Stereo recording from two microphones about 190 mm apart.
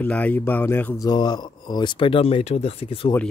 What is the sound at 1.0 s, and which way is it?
Speech, 20° left (ahead or behind).